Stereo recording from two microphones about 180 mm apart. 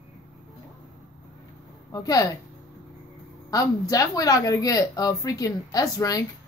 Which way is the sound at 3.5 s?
20° left (ahead or behind).